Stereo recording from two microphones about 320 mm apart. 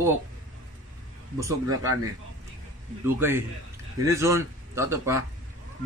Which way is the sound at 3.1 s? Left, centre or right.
Centre.